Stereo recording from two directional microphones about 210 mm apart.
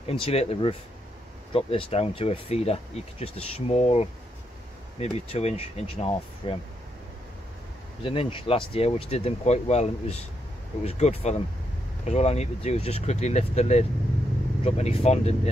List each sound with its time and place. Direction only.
0.0 s speech: 25° left (ahead or behind)
8.0 s speech: 25° left (ahead or behind)